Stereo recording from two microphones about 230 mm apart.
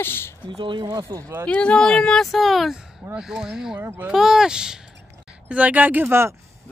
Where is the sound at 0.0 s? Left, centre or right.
Centre.